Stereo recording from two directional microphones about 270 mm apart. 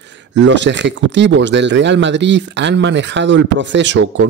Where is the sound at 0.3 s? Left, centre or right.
Right.